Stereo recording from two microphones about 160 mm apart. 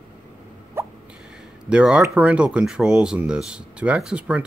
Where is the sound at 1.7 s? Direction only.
5° right (ahead or behind).